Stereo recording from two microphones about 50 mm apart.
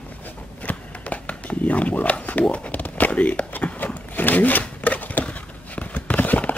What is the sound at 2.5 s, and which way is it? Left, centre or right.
Speech, left.